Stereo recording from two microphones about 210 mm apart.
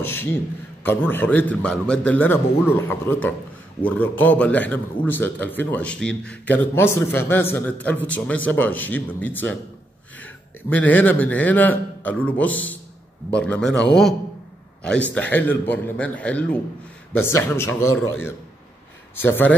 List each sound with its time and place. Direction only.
0.0 s a sound: 10° left (ahead or behind)
0.8 s a man's voice: 10° left (ahead or behind)
19.1 s a man's voice: 10° left (ahead or behind)